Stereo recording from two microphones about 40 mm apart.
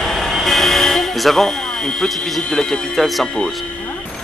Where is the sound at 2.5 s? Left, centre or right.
Centre.